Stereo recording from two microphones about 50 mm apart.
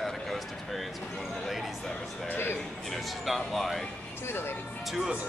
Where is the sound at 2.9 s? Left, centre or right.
Centre.